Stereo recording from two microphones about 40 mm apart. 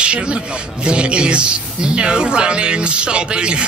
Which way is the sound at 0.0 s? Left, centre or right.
Right.